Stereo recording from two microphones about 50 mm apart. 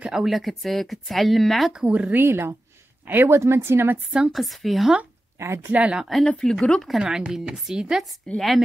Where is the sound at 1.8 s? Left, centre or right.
Right.